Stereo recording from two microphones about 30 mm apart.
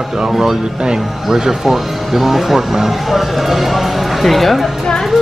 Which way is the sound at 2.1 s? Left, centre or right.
Centre.